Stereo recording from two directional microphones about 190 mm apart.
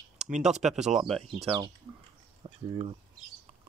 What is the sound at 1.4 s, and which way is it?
Speech, 25° right (ahead or behind).